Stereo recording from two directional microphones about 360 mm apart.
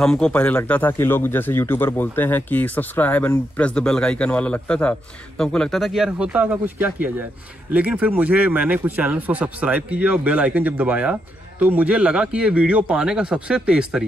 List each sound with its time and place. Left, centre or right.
0.0 s speech: centre